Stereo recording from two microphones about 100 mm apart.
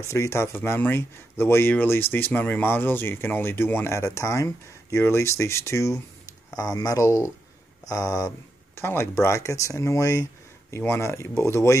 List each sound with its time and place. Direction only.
0.0 s speech: 30° left (ahead or behind)
8.7 s speech: 25° left (ahead or behind)